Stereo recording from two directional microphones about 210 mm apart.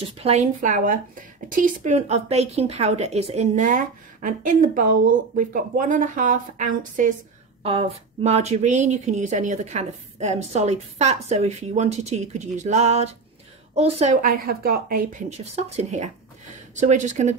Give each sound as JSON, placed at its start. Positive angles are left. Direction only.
{"t": 0.2, "sound": "speech", "side_deg": -30}